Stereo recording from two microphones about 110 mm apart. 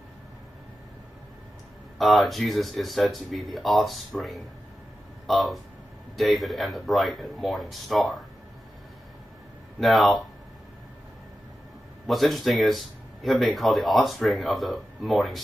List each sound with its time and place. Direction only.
2.0 s speech: centre (ahead or behind)
9.8 s speech: centre (ahead or behind)
12.1 s speech: centre (ahead or behind)